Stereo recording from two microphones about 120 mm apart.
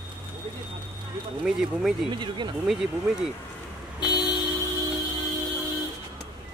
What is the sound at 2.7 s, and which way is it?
Speech, 5° right (ahead or behind).